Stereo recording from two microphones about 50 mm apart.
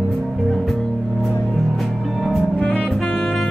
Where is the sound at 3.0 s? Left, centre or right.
Centre.